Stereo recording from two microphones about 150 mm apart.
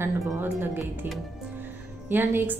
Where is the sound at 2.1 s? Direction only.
15° right (ahead or behind).